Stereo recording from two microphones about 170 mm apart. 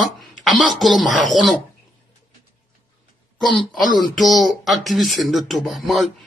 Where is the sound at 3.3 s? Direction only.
Centre (ahead or behind).